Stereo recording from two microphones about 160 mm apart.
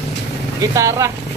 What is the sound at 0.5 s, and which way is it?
Speech, 20° right (ahead or behind).